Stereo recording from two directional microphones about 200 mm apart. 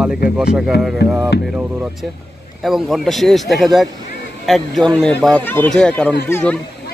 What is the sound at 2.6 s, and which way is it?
A man's voice, centre (ahead or behind).